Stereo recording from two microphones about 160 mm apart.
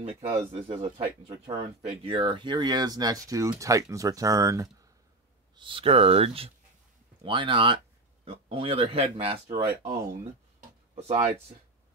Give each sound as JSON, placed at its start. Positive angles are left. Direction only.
{"t": 0.0, "sound": "speech", "side_deg": -40}
{"t": 5.6, "sound": "speech", "side_deg": -35}